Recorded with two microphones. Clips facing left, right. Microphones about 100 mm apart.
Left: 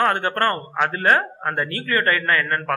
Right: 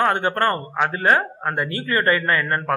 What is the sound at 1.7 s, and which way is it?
Speech, 20° right (ahead or behind).